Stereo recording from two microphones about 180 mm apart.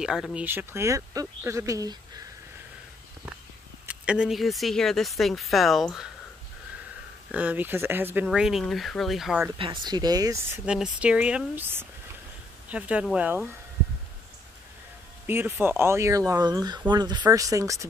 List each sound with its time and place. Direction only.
0.0 s speech: 5° right (ahead or behind); by 2.2 s 20° right (ahead or behind)
3.9 s speech: 5° right (ahead or behind)
7.2 s speech: 10° right (ahead or behind)
9.8 s speech: 20° right (ahead or behind)
15.2 s speech: 10° right (ahead or behind)